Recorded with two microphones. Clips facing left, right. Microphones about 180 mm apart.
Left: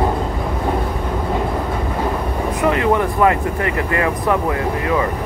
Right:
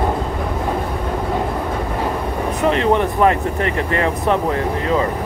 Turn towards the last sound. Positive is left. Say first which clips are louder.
# even
turn(degrees=-25)  # may be behind; listen again after turning